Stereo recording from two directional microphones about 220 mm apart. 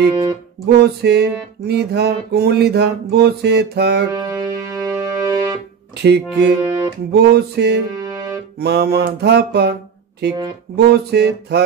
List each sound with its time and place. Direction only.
0.1 s speech: 20° right (ahead or behind)
0.7 s music: 50° right (ahead or behind)
4.1 s music: 15° right (ahead or behind)
6.0 s music: 50° right (ahead or behind)
6.6 s music: 20° right (ahead or behind)
7.1 s music: 45° right (ahead or behind)
8.0 s music: 15° right (ahead or behind)
8.5 s music: 45° right (ahead or behind)
10.9 s music: 45° right (ahead or behind)